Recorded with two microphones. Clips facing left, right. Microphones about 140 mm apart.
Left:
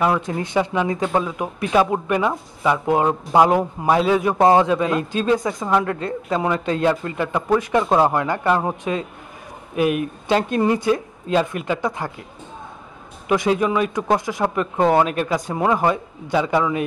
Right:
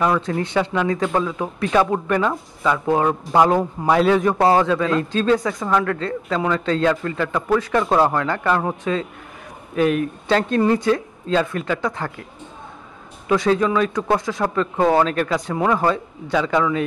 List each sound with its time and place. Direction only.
0.0 s speech: 15° left (ahead or behind)
13.3 s speech: 15° left (ahead or behind)